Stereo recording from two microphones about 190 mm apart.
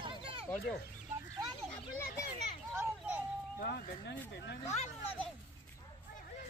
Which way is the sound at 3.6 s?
60° left (ahead or behind).